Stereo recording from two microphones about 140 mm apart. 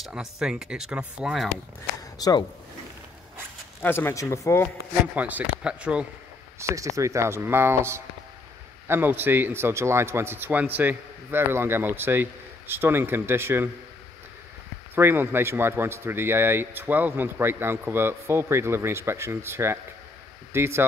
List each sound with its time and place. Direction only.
0.0 s speech: 5° right (ahead or behind)
2.1 s speech: 25° left (ahead or behind)
3.8 s speech: 15° left (ahead or behind)
5.1 s a man's voice: 10° right (ahead or behind)
6.6 s a man's voice: 20° right (ahead or behind)
15.0 s a man's voice: 15° right (ahead or behind)